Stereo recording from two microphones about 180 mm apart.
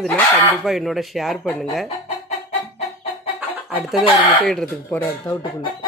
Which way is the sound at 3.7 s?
Centre (ahead or behind).